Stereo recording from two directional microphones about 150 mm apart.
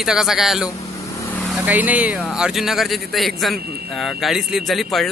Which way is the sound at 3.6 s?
90° right.